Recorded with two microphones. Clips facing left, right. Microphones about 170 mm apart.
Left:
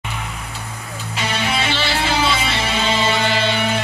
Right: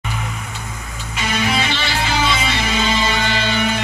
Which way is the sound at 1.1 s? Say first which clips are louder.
Right 2 dB; 30° left (ahead or behind).